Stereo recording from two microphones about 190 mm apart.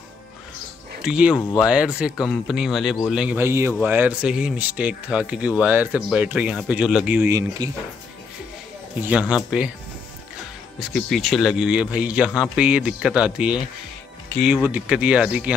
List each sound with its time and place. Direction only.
1.0 s speech: 5° right (ahead or behind)
9.2 s speech: 5° right (ahead or behind)
10.8 s speech: centre (ahead or behind)